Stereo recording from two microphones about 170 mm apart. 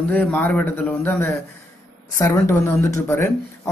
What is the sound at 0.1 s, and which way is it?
Speech, 10° left (ahead or behind).